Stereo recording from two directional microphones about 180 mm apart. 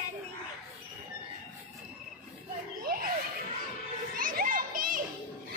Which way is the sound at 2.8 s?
55° right (ahead or behind).